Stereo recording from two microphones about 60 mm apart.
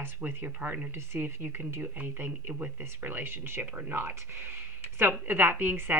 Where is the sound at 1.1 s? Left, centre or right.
Right.